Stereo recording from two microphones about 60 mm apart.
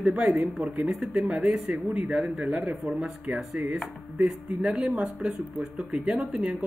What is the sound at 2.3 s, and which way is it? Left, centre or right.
Speech, centre.